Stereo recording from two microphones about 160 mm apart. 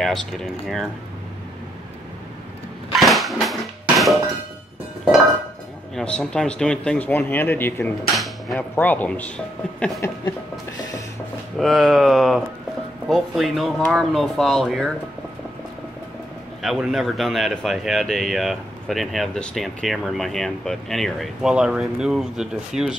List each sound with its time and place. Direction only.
0.0 s speech: centre (ahead or behind)
2.9 s a sound: centre (ahead or behind)
5.9 s speech: 5° left (ahead or behind)
11.5 s speech: 5° left (ahead or behind)
16.6 s speech: centre (ahead or behind)